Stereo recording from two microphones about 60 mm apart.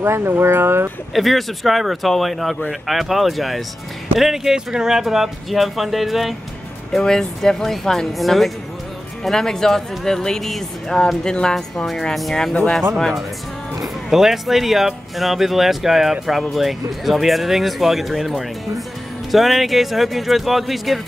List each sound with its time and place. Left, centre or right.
0.0 s speech: right
1.1 s speech: centre
13.7 s speech: centre